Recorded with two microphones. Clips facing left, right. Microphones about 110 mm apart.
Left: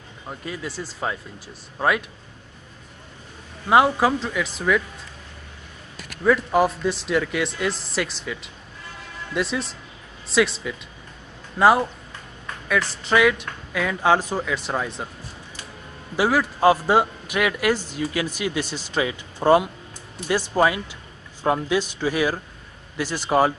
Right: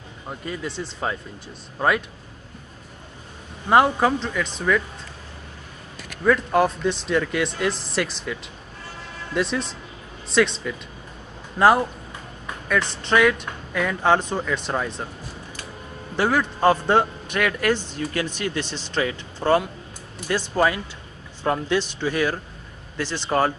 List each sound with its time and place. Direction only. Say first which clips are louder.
0.3 s speech: right 1 dB; centre (ahead or behind)
3.6 s speech: even; 5° left (ahead or behind)
6.2 s speech: even; 5° left (ahead or behind)
16.2 s a man's voice: left 1 dB; 5° left (ahead or behind)